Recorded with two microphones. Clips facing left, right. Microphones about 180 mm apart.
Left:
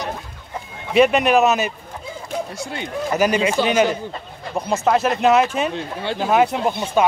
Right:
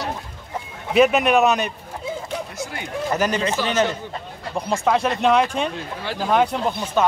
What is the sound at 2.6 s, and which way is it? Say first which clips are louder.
Speech: left 2 dB; 25° left (ahead or behind).